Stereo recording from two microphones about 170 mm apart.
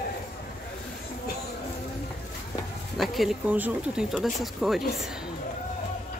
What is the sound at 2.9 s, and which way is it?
Speech, centre (ahead or behind).